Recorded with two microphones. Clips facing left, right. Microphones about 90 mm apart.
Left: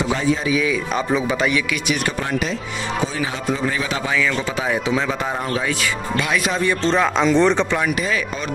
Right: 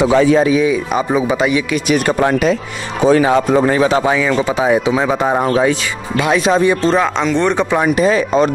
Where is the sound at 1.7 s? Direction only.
45° right (ahead or behind); by 6.8 s 20° right (ahead or behind).